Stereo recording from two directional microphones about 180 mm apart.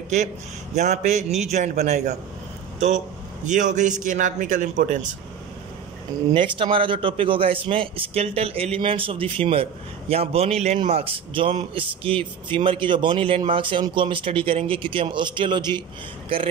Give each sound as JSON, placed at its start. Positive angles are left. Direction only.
{"t": 0.7, "sound": "a man's voice", "side_deg": -40}
{"t": 3.4, "sound": "a man's voice", "side_deg": -45}
{"t": 6.3, "sound": "a man's voice", "side_deg": -30}